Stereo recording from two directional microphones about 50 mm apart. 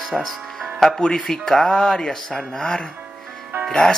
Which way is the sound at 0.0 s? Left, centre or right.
Centre.